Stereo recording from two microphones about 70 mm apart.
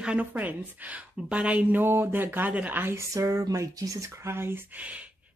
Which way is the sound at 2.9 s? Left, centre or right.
Right.